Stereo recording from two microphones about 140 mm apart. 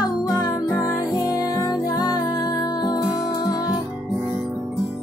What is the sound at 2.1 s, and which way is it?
Music, 30° left (ahead or behind).